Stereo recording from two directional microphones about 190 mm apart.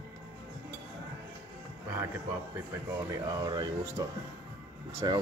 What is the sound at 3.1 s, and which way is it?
Speech, 20° right (ahead or behind).